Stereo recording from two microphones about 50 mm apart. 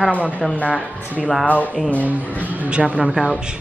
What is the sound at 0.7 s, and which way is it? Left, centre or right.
Speech, right.